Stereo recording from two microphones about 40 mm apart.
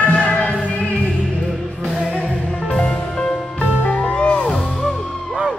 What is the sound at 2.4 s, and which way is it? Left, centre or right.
Music, left.